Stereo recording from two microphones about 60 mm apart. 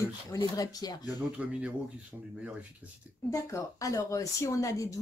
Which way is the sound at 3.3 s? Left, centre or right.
Left.